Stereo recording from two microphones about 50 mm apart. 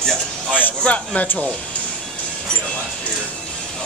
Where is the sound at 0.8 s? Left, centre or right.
Left.